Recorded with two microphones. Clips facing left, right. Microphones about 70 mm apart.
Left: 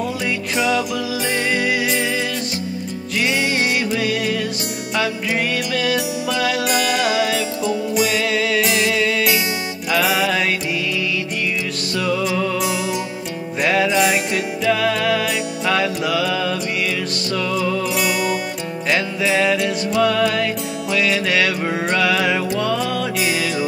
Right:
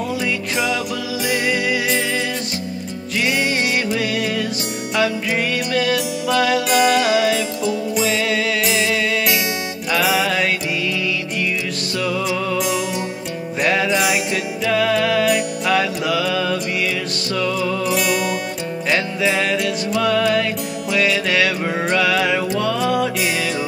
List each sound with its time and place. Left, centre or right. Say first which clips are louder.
19.2 s music: left 2 dB; centre